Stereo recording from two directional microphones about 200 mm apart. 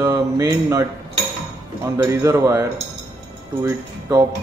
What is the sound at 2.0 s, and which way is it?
Speech, 15° right (ahead or behind).